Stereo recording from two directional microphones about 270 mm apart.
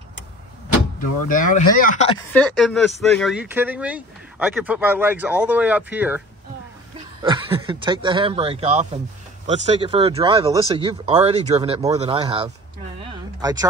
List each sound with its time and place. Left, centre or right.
0.9 s speech: left
2.3 s speech: centre